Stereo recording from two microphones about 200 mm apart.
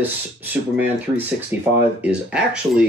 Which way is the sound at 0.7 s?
10° right (ahead or behind).